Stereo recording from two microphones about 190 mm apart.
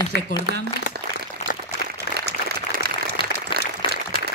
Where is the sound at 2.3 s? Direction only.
55° right (ahead or behind).